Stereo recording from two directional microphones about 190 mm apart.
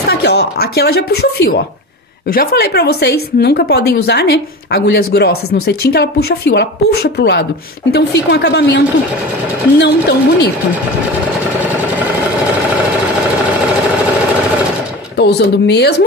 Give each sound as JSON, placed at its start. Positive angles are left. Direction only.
{"t": 0.0, "sound": "a woman's voice", "side_deg": 60}
{"t": 15.1, "sound": "a woman's voice", "side_deg": 60}